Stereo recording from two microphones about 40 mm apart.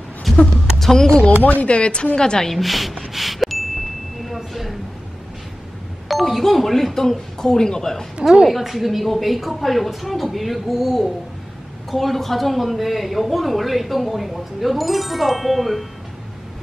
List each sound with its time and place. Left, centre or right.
0.3 s a sound: centre
0.7 s speech: centre
1.4 s speech: left
2.1 s a woman's voice: centre
2.5 s a man's voice: centre
3.1 s a sound: centre
6.0 s speech: centre
8.5 s a man's voice: centre